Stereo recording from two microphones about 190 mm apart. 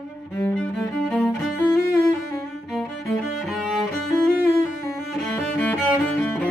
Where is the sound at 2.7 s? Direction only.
Centre (ahead or behind).